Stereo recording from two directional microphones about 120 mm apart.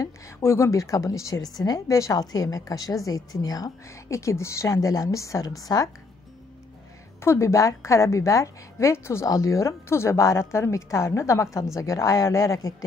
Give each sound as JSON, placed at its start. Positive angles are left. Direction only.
{"t": 0.0, "sound": "a woman's voice", "side_deg": 25}
{"t": 7.2, "sound": "a woman's voice", "side_deg": 20}